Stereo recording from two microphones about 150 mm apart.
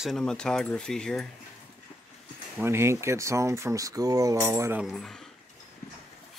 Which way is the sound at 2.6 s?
15° right (ahead or behind).